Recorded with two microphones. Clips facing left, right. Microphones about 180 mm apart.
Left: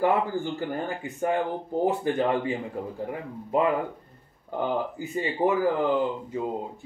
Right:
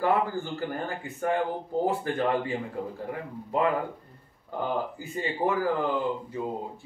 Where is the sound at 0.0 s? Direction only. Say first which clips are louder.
Left 2 dB; 15° left (ahead or behind).